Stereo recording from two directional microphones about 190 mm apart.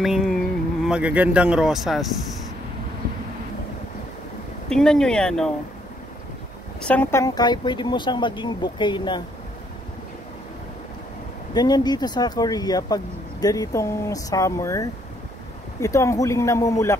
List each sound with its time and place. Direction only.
0.0 s a sound: centre (ahead or behind)
0.8 s a man's voice: 5° right (ahead or behind)
4.6 s a man's voice: 5° left (ahead or behind)
6.9 s speech: 10° left (ahead or behind)
11.5 s speech: 20° left (ahead or behind)